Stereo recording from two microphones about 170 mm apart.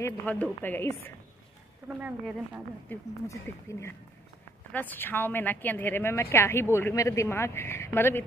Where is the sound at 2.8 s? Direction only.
15° left (ahead or behind).